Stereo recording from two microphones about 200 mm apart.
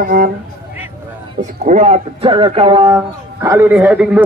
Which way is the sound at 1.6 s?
35° right (ahead or behind).